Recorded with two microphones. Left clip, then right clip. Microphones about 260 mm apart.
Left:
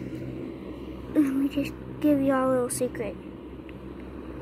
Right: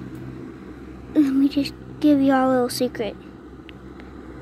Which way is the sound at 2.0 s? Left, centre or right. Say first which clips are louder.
Right 5 dB; right.